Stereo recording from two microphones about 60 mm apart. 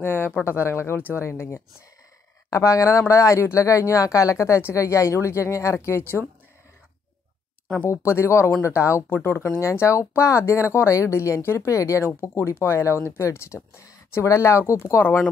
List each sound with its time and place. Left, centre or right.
0.0 s speech: left
2.5 s speech: left
7.9 s speech: left
9.1 s speech: left
12.1 s speech: left
15.0 s speech: left